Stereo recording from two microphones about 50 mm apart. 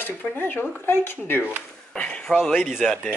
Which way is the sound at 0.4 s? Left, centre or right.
Left.